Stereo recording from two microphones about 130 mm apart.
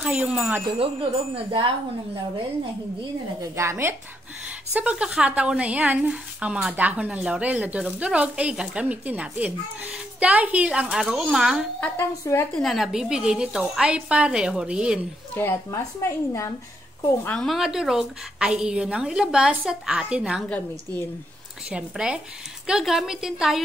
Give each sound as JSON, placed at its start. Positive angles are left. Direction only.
{"t": 0.0, "sound": "a woman's voice", "side_deg": -10}
{"t": 1.3, "sound": "speech", "side_deg": -40}
{"t": 3.5, "sound": "speech", "side_deg": -20}
{"t": 4.7, "sound": "a woman's voice", "side_deg": -10}
{"t": 11.8, "sound": "a woman's voice", "side_deg": 15}
{"t": 12.5, "sound": "a woman's voice", "side_deg": 0}
{"t": 15.3, "sound": "speech", "side_deg": 20}
{"t": 17.4, "sound": "a woman's voice", "side_deg": 0}
{"t": 20.4, "sound": "a woman's voice", "side_deg": 10}
{"t": 21.6, "sound": "a woman's voice", "side_deg": -5}